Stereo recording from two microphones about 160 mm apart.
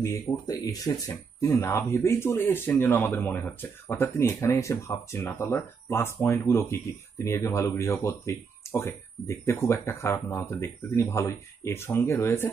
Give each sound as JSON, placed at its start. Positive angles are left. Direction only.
{"t": 0.0, "sound": "speech", "side_deg": 25}